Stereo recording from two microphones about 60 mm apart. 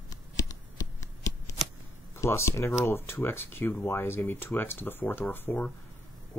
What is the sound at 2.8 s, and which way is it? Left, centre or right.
Speech, left.